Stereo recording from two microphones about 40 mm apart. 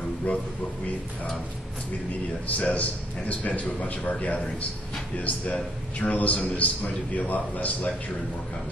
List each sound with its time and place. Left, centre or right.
0.2 s a man's voice: left
2.5 s a man's voice: left